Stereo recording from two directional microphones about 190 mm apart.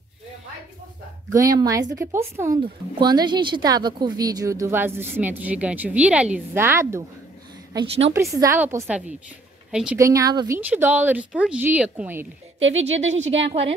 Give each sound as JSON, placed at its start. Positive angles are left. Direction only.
{"t": 1.3, "sound": "speech", "side_deg": -20}
{"t": 7.7, "sound": "a woman's voice", "side_deg": -30}
{"t": 8.1, "sound": "a woman's voice", "side_deg": -15}
{"t": 9.9, "sound": "speech", "side_deg": -15}
{"t": 10.7, "sound": "speech", "side_deg": -10}
{"t": 12.5, "sound": "speech", "side_deg": -90}
{"t": 13.4, "sound": "a woman's voice", "side_deg": -30}